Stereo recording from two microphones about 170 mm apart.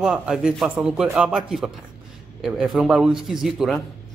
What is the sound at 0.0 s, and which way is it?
Speech, 5° right (ahead or behind).